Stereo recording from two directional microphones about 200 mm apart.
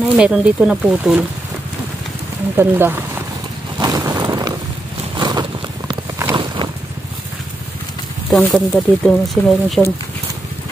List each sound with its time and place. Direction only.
0.2 s speech: 5° right (ahead or behind)
2.5 s speech: 10° right (ahead or behind)
3.8 s a sound: 15° right (ahead or behind)
8.3 s speech: centre (ahead or behind)